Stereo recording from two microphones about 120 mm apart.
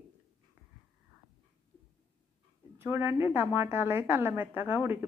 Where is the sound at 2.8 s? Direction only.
20° right (ahead or behind).